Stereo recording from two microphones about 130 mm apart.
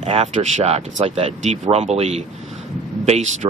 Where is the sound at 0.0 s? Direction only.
50° right (ahead or behind).